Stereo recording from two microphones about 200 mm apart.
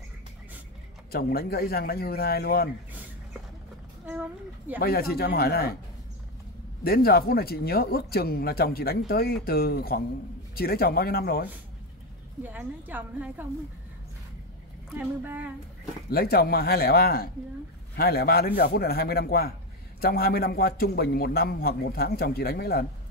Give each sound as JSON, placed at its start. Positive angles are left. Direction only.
{"t": 1.1, "sound": "speech", "side_deg": 50}
{"t": 4.0, "sound": "speech", "side_deg": -10}
{"t": 4.7, "sound": "speech", "side_deg": 50}
{"t": 6.8, "sound": "speech", "side_deg": 50}
{"t": 12.4, "sound": "a woman's voice", "side_deg": -10}
{"t": 15.0, "sound": "a woman's voice", "side_deg": -10}
{"t": 16.1, "sound": "speech", "side_deg": 50}